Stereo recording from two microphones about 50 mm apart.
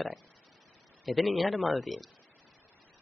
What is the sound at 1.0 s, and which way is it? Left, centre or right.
Speech, centre.